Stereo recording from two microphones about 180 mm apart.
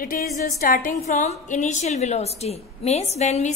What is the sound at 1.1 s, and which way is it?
A woman's voice, 40° left (ahead or behind).